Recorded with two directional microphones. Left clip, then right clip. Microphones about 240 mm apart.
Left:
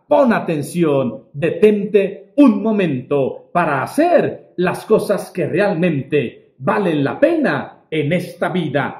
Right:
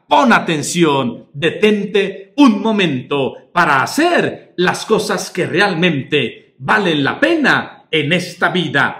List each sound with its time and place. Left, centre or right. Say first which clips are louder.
0.1 s a man's voice: right 3 dB; centre